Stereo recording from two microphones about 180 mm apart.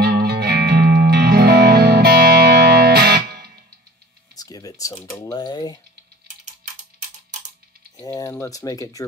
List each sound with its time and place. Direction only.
0.0 s music: 60° right (ahead or behind)
4.4 s speech: 20° left (ahead or behind)
6.2 s typing: 45° right (ahead or behind)
8.0 s speech: 20° left (ahead or behind)